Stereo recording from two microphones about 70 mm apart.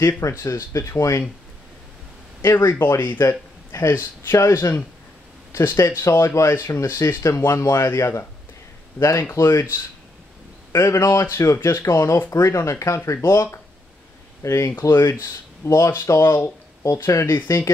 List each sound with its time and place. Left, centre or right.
0.3 s speech: left
2.4 s speech: left
9.3 s speech: left